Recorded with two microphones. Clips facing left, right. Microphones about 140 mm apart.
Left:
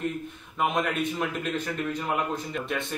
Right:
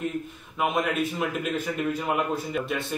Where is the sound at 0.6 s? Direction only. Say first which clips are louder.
Right 1 dB; 5° right (ahead or behind).